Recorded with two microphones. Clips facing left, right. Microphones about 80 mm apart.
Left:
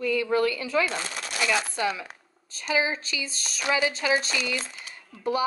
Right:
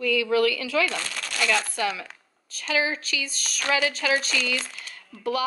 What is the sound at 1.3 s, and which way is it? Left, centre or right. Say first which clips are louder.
A woman's voice: right 1 dB; centre.